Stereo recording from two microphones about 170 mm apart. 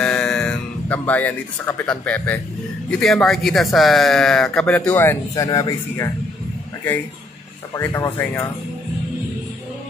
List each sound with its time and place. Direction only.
0.0 s speech: 5° left (ahead or behind)
7.7 s speech: 15° left (ahead or behind)